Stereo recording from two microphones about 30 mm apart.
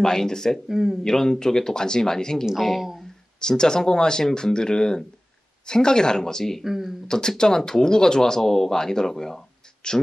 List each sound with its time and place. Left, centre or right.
0.0 s speech: centre
0.7 s speech: centre
1.0 s speech: centre
6.6 s speech: centre
7.1 s speech: left
9.8 s speech: left